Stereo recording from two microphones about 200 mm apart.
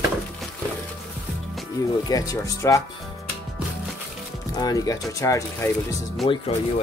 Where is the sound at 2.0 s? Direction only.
20° left (ahead or behind).